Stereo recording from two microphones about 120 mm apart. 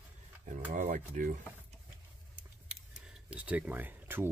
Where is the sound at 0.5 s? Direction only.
90° right.